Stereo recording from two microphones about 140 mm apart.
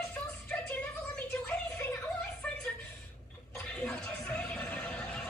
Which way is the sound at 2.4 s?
5° left (ahead or behind).